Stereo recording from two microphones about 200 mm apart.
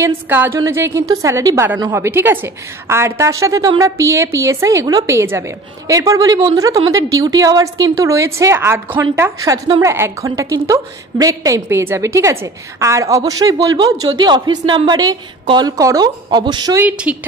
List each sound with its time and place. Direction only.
0.0 s a woman's voice: 10° right (ahead or behind)
16.8 s a woman's voice: 5° right (ahead or behind)